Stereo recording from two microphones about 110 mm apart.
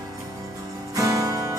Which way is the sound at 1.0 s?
30° right (ahead or behind).